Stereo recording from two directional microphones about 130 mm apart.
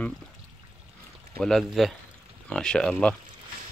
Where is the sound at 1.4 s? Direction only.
Centre (ahead or behind).